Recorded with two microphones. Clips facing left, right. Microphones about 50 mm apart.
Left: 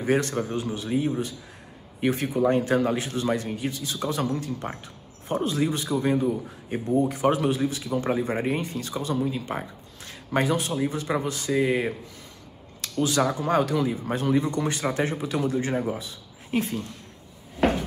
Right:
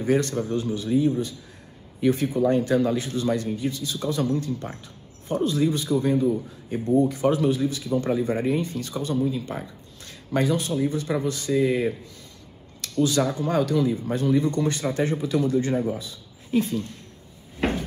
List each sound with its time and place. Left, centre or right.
0.0 s speech: left
13.0 s speech: left